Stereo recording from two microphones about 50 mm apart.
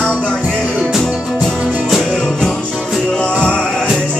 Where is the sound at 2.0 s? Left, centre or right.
Centre.